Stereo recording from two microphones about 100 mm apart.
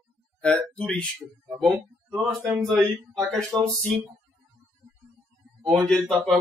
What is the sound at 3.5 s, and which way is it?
Speech, 40° right (ahead or behind).